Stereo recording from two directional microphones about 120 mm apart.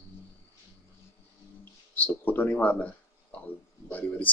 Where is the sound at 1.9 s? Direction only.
15° left (ahead or behind).